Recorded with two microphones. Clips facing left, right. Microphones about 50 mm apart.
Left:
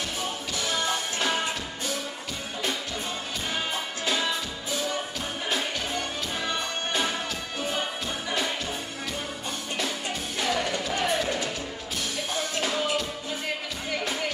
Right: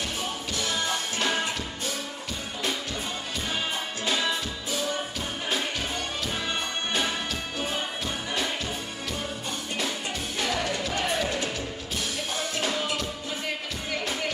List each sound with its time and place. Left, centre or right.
0.6 s music: centre
4.0 s music: centre
10.4 s music: centre
12.5 s music: centre